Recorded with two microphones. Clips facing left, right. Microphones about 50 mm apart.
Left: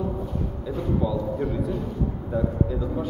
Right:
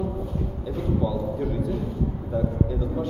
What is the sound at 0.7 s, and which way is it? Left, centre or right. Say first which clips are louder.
A man's voice: even; centre.